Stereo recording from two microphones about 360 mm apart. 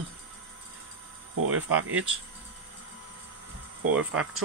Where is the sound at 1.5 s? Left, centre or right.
Right.